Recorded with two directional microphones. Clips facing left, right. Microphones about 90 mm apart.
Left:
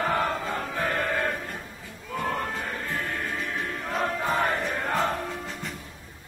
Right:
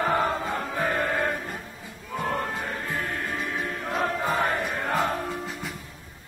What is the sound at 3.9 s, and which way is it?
Music, 5° right (ahead or behind).